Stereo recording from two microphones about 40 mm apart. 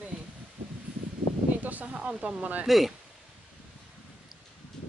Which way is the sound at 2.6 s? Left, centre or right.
Centre.